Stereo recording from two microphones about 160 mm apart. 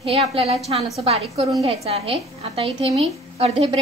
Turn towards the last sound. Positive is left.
turn(degrees=-35)  # may be behind; listen again after turning